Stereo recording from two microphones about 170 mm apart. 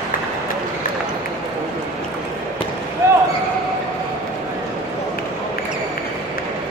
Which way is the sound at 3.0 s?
15° right (ahead or behind).